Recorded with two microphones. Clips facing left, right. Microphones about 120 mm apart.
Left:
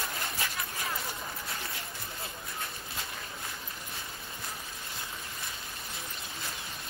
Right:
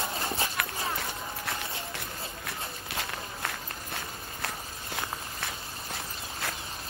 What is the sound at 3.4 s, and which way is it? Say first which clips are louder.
Walk: right 5 dB; 70° right (ahead or behind).